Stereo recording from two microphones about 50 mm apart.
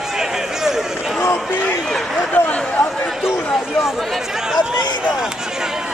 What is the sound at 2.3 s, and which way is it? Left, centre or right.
Chatter, left.